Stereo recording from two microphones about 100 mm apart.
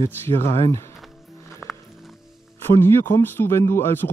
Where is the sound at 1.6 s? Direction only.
5° right (ahead or behind).